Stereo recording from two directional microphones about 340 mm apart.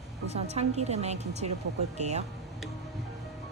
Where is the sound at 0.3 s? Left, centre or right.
Centre.